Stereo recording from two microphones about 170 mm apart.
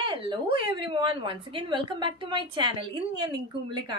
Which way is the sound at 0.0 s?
30° right (ahead or behind).